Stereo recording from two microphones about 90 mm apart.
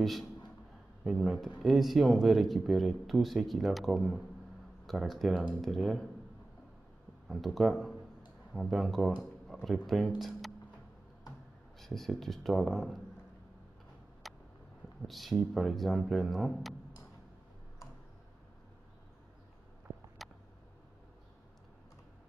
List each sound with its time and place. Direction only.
0.0 s a man's voice: centre (ahead or behind)
7.2 s speech: centre (ahead or behind)
9.2 s a sound: 5° right (ahead or behind)
9.8 s speech: centre (ahead or behind)
11.8 s speech: centre (ahead or behind)
14.2 s vehicle: centre (ahead or behind)
15.0 s speech: centre (ahead or behind)
20.2 s a sound: centre (ahead or behind)